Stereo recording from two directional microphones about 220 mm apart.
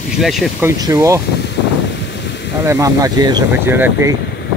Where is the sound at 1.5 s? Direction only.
50° left (ahead or behind).